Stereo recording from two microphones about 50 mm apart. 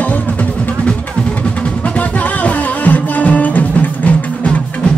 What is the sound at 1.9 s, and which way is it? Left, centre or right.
Music, left.